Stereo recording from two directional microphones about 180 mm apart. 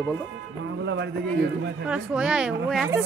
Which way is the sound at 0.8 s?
80° right.